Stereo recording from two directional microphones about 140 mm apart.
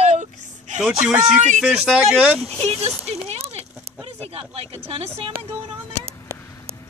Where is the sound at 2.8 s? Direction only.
50° right (ahead or behind).